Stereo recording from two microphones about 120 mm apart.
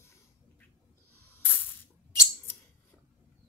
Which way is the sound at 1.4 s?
15° left (ahead or behind).